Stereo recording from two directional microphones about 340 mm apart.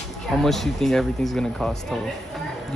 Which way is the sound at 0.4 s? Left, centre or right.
Centre.